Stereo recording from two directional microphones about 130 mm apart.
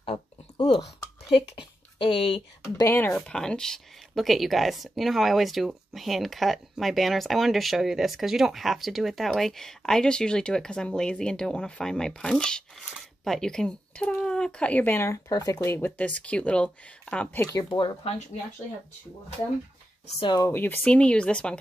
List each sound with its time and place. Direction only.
0.6 s a sound: 40° left (ahead or behind)
1.3 s speech: 40° left (ahead or behind)
2.6 s speech: 20° left (ahead or behind)
3.2 s speech: 5° left (ahead or behind)
17.6 s speech: 35° left (ahead or behind)
20.2 s speech: 35° left (ahead or behind)
20.4 s speech: 15° left (ahead or behind)